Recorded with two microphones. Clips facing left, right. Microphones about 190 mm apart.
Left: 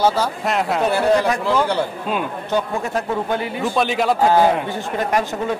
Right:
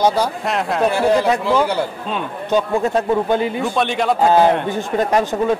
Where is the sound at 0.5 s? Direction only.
Centre (ahead or behind).